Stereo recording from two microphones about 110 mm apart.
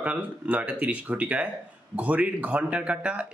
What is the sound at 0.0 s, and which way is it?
Speech, 15° right (ahead or behind).